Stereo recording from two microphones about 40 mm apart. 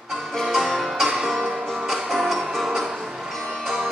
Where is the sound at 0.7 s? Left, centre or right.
Centre.